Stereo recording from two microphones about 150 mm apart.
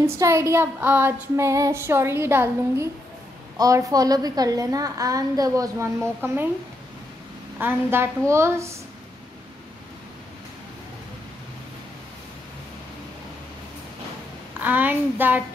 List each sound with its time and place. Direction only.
0.0 s child singing: 20° right (ahead or behind)
3.5 s a woman's voice: 25° right (ahead or behind)
7.5 s child singing: 15° right (ahead or behind)
14.6 s child singing: 10° right (ahead or behind)